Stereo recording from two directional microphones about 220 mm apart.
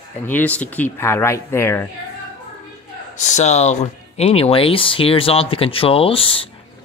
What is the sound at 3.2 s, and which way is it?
Speech, 30° left (ahead or behind).